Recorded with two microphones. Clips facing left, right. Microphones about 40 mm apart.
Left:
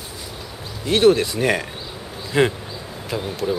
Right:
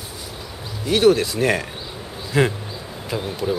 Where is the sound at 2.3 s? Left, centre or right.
Left.